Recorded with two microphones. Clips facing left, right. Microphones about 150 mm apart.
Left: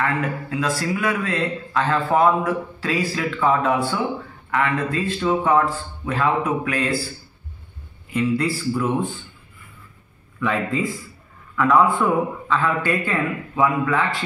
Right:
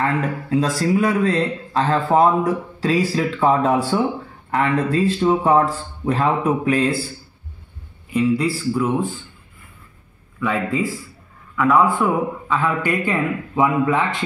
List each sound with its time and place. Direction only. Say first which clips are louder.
0.0 s speech: right 2 dB; 30° right (ahead or behind)
8.1 s a man's voice: right 3 dB; 10° right (ahead or behind)
10.4 s a man's voice: right 1 dB; 5° right (ahead or behind)